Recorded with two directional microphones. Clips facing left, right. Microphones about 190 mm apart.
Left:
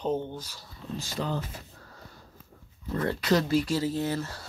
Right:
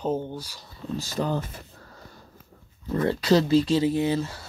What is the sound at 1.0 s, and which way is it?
Speech, 45° right (ahead or behind).